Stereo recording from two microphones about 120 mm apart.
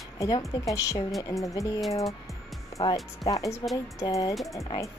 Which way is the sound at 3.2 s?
Centre (ahead or behind).